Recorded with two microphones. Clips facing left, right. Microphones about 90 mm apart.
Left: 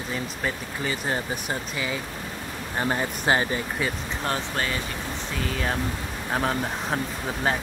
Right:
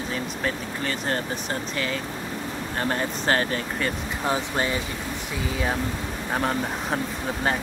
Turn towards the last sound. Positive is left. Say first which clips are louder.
# right 1 dB
turn(degrees=0)  # may be behind; listen again after turning